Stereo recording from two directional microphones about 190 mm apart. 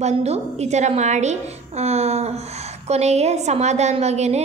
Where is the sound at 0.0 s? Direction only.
35° right (ahead or behind).